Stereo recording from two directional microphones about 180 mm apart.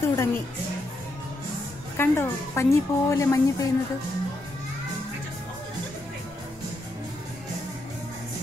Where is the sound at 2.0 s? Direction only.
15° left (ahead or behind).